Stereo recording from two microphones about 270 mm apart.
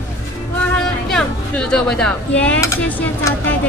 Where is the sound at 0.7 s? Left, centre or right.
Centre.